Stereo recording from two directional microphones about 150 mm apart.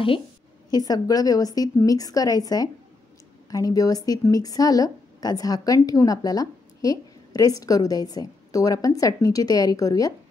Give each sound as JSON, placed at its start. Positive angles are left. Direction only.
{"t": 0.7, "sound": "a woman's voice", "side_deg": 25}